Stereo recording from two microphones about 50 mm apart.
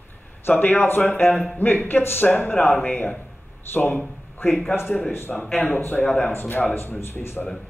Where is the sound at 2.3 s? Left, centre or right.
Left.